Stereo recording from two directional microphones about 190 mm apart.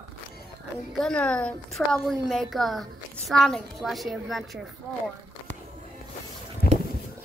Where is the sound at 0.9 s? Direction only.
5° left (ahead or behind).